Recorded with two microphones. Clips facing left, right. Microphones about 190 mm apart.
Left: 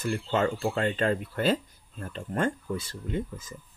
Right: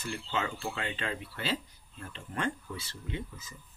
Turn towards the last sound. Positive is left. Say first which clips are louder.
# left 7 dB
turn(degrees=50)  # may be behind; listen again after turning